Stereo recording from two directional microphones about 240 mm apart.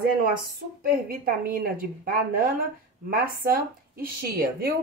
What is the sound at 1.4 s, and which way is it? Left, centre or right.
A woman's voice, right.